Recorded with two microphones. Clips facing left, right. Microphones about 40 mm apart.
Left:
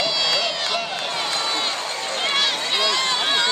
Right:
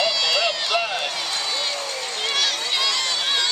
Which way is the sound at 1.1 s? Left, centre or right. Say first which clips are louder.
Left 3 dB; centre.